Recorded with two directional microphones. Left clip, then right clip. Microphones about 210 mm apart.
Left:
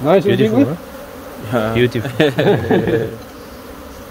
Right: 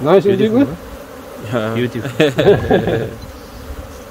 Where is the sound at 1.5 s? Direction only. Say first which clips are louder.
Left 1 dB; 5° right (ahead or behind).